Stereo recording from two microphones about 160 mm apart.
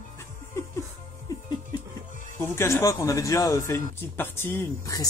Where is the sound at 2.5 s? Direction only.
15° left (ahead or behind).